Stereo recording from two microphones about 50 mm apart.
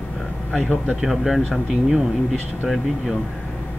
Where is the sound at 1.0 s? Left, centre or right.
Centre.